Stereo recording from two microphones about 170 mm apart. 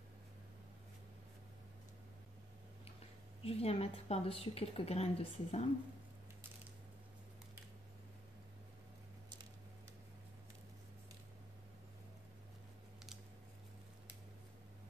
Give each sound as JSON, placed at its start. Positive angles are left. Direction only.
{"t": 3.4, "sound": "a woman's voice", "side_deg": 35}